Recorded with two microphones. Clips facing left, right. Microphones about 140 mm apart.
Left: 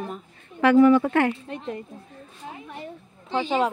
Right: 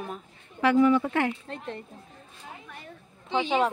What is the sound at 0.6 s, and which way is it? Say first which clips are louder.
Speech: left 5 dB; 55° left (ahead or behind).